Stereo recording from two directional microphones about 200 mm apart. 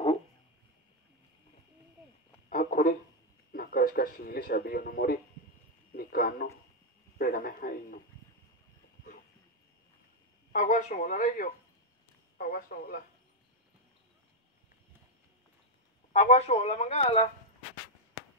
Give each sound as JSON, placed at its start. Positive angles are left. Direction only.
{"t": 2.5, "sound": "a sound", "side_deg": 40}
{"t": 3.5, "sound": "speech", "side_deg": 45}
{"t": 10.5, "sound": "speech", "side_deg": 40}
{"t": 16.1, "sound": "speech", "side_deg": 30}